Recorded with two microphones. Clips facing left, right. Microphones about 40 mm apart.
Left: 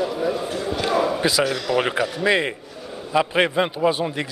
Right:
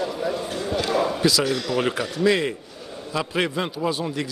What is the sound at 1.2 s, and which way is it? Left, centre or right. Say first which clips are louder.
Speech: left 1 dB; left.